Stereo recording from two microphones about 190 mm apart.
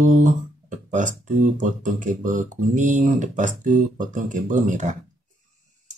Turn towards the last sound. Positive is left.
turn(degrees=-40)  # may be behind; listen again after turning